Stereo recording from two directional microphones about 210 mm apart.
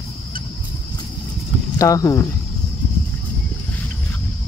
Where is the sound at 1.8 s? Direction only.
15° left (ahead or behind).